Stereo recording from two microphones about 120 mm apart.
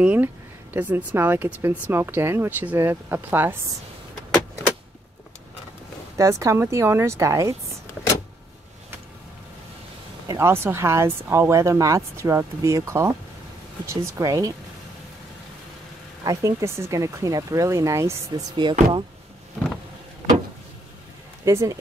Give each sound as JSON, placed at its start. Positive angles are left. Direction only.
{"t": 0.0, "sound": "speech", "side_deg": -10}
{"t": 6.1, "sound": "speech", "side_deg": -25}
{"t": 10.2, "sound": "speech", "side_deg": -25}
{"t": 16.3, "sound": "speech", "side_deg": -25}
{"t": 18.6, "sound": "speech", "side_deg": -40}
{"t": 21.5, "sound": "speech", "side_deg": -25}